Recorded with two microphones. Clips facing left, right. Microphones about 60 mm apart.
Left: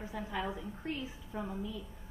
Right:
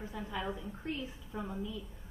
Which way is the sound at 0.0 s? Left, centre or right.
Centre.